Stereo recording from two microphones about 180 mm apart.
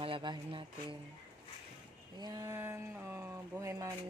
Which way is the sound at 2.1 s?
20° right (ahead or behind).